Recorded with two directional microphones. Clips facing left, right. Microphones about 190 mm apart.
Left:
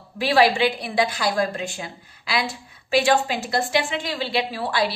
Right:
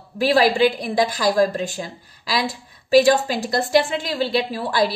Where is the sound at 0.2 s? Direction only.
40° right (ahead or behind).